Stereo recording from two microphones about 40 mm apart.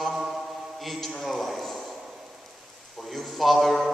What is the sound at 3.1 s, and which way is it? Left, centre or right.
Speech, centre.